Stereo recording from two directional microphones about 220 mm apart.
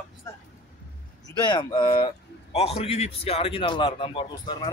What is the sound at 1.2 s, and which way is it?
A man's voice, 20° left (ahead or behind).